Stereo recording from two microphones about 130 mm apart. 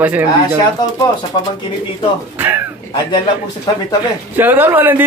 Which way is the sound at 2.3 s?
15° right (ahead or behind).